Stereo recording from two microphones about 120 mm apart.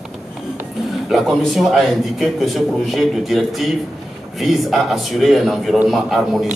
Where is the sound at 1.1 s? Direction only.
Centre (ahead or behind).